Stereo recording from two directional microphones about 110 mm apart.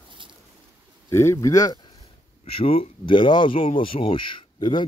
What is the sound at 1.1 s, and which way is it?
Speech, 25° left (ahead or behind).